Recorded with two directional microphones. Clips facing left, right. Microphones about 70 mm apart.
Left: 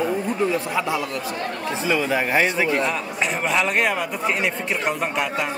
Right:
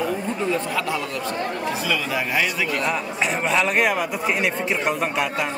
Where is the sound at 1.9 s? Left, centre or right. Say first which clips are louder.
Left 7 dB; left.